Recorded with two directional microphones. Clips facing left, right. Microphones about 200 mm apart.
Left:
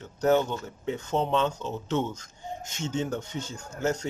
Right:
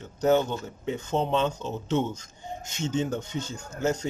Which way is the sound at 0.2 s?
20° right (ahead or behind).